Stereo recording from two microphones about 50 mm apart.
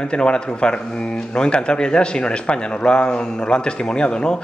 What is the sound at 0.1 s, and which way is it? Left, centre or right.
A man's voice, centre.